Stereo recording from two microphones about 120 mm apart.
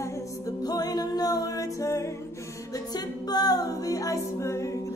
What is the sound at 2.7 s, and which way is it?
A capella, 35° left (ahead or behind).